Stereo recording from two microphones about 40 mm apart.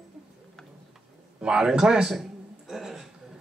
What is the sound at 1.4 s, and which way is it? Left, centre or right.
Speech, centre.